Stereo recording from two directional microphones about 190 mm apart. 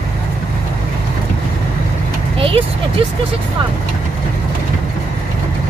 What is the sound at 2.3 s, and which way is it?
Speech, 30° right (ahead or behind).